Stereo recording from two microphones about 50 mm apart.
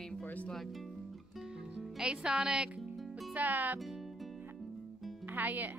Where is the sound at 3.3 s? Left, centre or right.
Right.